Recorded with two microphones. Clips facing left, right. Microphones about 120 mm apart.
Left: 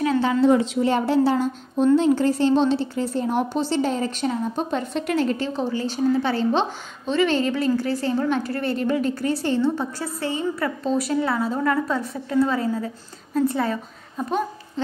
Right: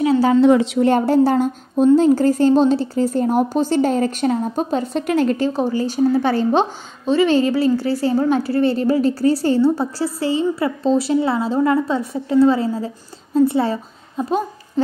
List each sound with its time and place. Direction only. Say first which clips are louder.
0.4 s a woman's voice: right 4 dB; 75° right (ahead or behind)
0.8 s a woman's voice: right 5 dB; 45° right (ahead or behind)
7.1 s a woman's voice: right 5 dB; 35° right (ahead or behind)